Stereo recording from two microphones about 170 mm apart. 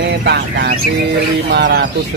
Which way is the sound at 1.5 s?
80° right.